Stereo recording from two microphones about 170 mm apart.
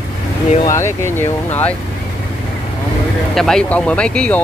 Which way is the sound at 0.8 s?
15° left (ahead or behind).